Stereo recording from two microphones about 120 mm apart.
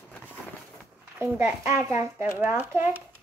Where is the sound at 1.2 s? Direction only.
20° right (ahead or behind).